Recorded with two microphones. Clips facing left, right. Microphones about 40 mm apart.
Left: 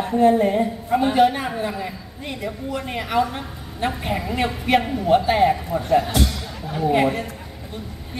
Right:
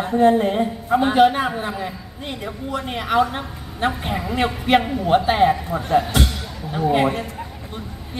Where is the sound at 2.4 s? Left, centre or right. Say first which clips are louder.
Even; right.